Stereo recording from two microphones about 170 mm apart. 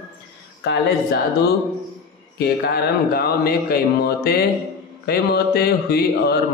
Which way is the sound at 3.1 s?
70° left (ahead or behind).